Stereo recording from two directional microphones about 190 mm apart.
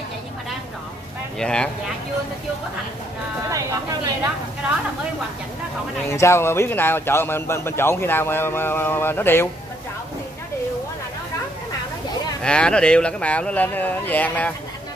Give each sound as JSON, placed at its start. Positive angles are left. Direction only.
{"t": 1.4, "sound": "speech", "side_deg": 5}
{"t": 3.4, "sound": "speech", "side_deg": -15}
{"t": 6.0, "sound": "speech", "side_deg": 15}
{"t": 12.4, "sound": "speech", "side_deg": 5}